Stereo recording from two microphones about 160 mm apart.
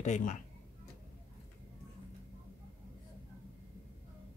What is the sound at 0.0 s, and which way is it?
Speech, 50° left (ahead or behind).